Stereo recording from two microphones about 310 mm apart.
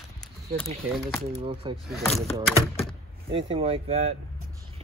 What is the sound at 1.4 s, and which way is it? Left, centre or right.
Speech, centre.